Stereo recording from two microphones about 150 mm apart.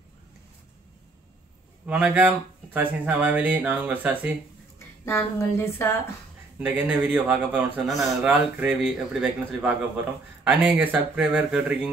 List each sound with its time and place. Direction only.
1.9 s speech: 10° right (ahead or behind)
4.7 s a woman's voice: 20° left (ahead or behind)
6.6 s speech: 10° right (ahead or behind)